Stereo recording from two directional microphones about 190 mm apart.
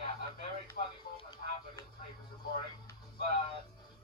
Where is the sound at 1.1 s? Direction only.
20° left (ahead or behind).